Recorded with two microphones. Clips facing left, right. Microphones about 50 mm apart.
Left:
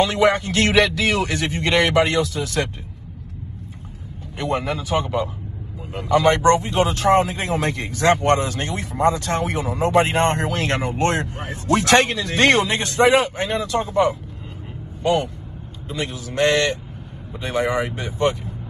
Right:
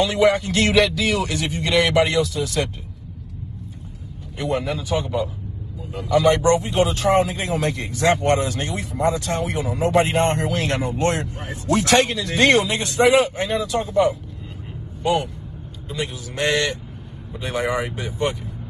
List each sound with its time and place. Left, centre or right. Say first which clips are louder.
0.0 s speech: even; left
4.4 s speech: even; left
6.1 s speech: left 1 dB; left
15.9 s speech: left 1 dB; left
17.4 s speech: left 2 dB; centre